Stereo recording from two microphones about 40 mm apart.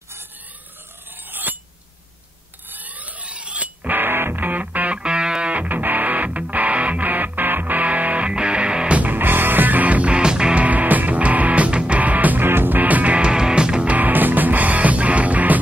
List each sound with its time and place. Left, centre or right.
1.3 s a sound: right
2.7 s a sound: right
4.0 s music: right
4.4 s music: right
4.9 s music: right
5.7 s music: right
8.3 s music: right
9.0 s music: right
10.1 s music: right
10.6 s music: right
12.0 s music: right
12.4 s music: right
13.3 s music: centre
13.8 s music: right